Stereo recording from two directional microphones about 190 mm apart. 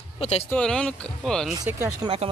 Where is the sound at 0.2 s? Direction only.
35° left (ahead or behind).